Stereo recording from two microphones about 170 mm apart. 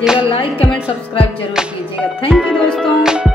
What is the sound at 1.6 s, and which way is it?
Speech, 5° right (ahead or behind).